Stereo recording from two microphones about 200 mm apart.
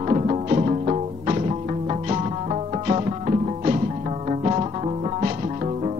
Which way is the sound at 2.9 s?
30° right (ahead or behind).